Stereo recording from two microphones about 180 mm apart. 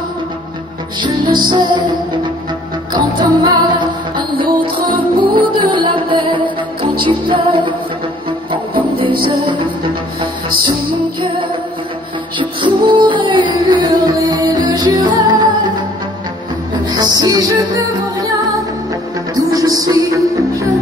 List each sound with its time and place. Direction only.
1.0 s music: 25° right (ahead or behind)
2.9 s music: 25° right (ahead or behind)
11.1 s music: 30° right (ahead or behind)
16.9 s music: 20° right (ahead or behind)
19.5 s music: 20° right (ahead or behind)